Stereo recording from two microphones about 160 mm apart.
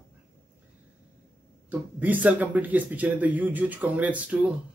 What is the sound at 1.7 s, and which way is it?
Speech, 10° right (ahead or behind).